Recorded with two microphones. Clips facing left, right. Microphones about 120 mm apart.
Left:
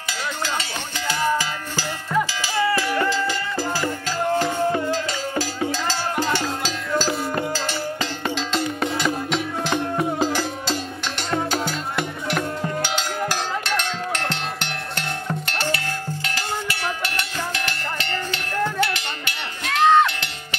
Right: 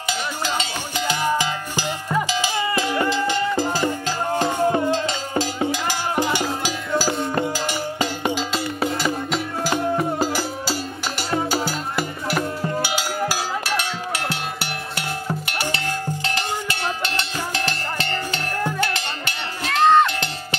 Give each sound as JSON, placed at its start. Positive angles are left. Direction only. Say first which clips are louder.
{"t": 0.6, "sound": "music", "louder": "right 3 dB", "side_deg": -20}
{"t": 4.7, "sound": "cowbell", "louder": "right 3 dB", "side_deg": -25}
{"t": 6.9, "sound": "music", "louder": "even", "side_deg": -5}
{"t": 7.5, "sound": "cowbell", "louder": "right 1 dB", "side_deg": -15}
{"t": 8.5, "sound": "music", "louder": "even", "side_deg": -5}
{"t": 16.3, "sound": "music", "louder": "right 1 dB", "side_deg": -25}
{"t": 18.8, "sound": "cowbell", "louder": "left 1 dB", "side_deg": -35}
{"t": 19.6, "sound": "music", "louder": "right 1 dB", "side_deg": 0}